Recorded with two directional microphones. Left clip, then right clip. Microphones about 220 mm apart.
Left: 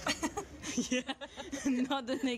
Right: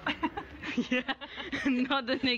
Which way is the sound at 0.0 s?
15° left (ahead or behind).